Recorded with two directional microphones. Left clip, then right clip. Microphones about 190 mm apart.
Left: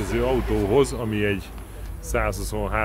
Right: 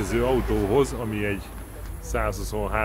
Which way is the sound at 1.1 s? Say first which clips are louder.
Left 4 dB; 50° left (ahead or behind).